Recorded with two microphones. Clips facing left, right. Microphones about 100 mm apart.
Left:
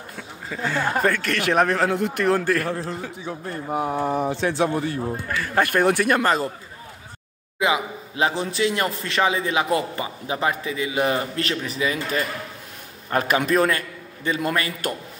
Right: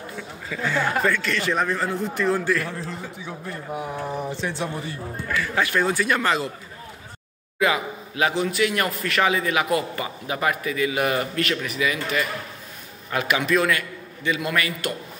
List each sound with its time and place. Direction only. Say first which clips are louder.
0.5 s a man's voice: even; 45° left (ahead or behind); by 4.9 s 65° left (ahead or behind)
5.4 s a man's voice: left 3 dB; 45° left (ahead or behind)
7.5 s a man's voice: even; 20° left (ahead or behind); by 15.0 s 40° left (ahead or behind)